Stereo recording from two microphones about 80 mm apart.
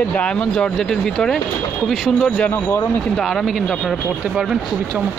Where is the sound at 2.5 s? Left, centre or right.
Left.